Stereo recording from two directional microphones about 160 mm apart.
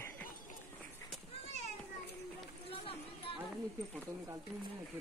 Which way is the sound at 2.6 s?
35° left (ahead or behind).